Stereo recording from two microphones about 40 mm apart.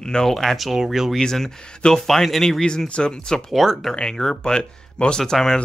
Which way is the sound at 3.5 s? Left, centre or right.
Centre.